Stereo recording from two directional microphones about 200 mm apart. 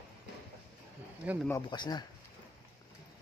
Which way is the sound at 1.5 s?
20° left (ahead or behind).